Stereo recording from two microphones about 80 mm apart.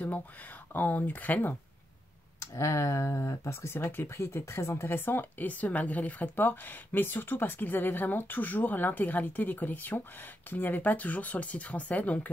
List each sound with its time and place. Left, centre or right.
0.7 s speech: left
2.5 s speech: left; by 12.3 s centre